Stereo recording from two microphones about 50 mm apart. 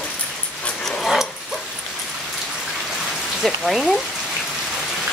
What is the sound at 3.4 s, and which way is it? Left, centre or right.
Speech, centre.